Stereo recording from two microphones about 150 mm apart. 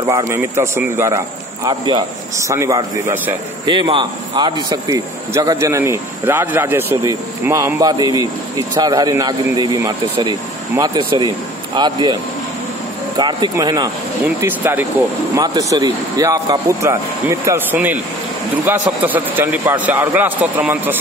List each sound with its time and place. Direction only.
0.0 s a man's voice: 20° right (ahead or behind)
1.7 s speech: 30° right (ahead or behind)
2.3 s speech: 20° right (ahead or behind)
3.6 s speech: 30° right (ahead or behind)
13.2 s speech: 30° right (ahead or behind)
14.2 s a man's voice: 15° right (ahead or behind)